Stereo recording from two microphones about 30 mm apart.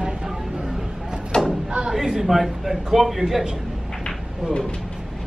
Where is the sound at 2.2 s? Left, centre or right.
Centre.